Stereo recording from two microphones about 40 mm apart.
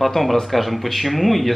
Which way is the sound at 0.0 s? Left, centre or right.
Centre.